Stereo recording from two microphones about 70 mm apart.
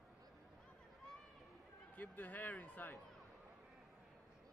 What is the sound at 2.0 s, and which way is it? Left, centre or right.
Speech, left.